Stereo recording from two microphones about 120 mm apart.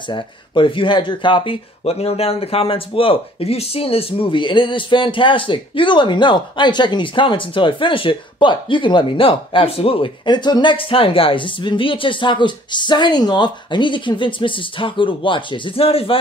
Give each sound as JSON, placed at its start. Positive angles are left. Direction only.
{"t": 0.1, "sound": "speech", "side_deg": 45}